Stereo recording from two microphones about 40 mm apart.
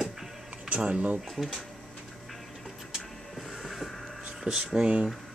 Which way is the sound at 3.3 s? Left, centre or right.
Centre.